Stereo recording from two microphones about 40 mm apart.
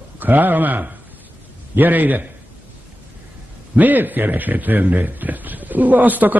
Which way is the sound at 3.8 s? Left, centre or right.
Right.